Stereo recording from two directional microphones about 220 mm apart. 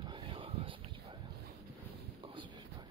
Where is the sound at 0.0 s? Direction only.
20° right (ahead or behind).